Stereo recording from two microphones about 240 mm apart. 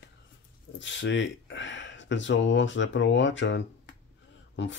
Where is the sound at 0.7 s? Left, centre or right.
Left.